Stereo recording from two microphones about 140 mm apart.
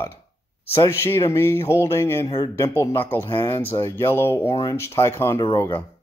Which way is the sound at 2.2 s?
30° left (ahead or behind).